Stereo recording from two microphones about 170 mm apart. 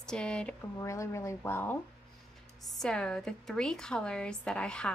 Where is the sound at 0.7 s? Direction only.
15° left (ahead or behind).